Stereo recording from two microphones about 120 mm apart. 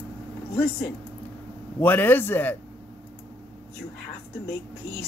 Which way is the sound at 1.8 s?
15° left (ahead or behind).